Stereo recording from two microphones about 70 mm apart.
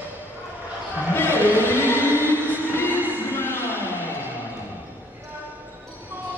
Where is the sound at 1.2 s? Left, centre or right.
Left.